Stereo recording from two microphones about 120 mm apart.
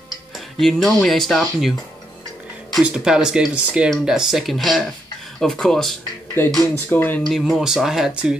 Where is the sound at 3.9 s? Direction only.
5° right (ahead or behind).